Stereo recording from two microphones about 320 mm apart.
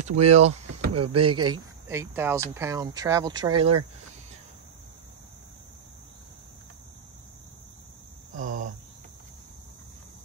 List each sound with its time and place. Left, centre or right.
0.0 s speech: centre
8.4 s cricket: right